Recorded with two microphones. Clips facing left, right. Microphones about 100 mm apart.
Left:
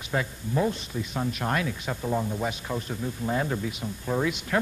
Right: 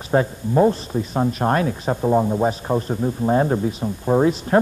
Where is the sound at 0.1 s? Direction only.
40° right (ahead or behind).